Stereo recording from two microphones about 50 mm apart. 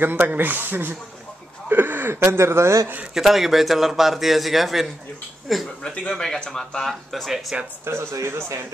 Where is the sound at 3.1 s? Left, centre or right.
Centre.